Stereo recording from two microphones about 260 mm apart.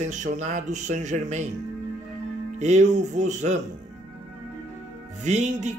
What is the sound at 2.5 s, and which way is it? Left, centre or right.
A man's voice, right.